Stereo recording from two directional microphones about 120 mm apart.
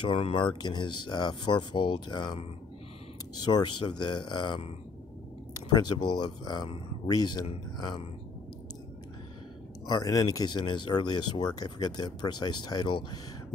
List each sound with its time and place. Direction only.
0.0 s speech: 50° left (ahead or behind)
3.3 s speech: 35° left (ahead or behind)
9.8 s speech: 30° left (ahead or behind)